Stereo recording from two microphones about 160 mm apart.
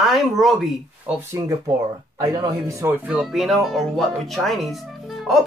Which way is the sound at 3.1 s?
5° right (ahead or behind).